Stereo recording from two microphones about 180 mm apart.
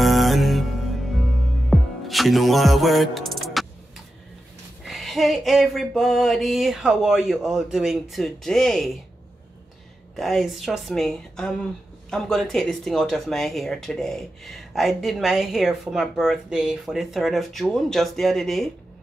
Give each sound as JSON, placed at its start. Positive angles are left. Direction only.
{"t": 0.0, "sound": "music", "side_deg": 0}
{"t": 4.8, "sound": "speech", "side_deg": 0}
{"t": 10.1, "sound": "speech", "side_deg": 0}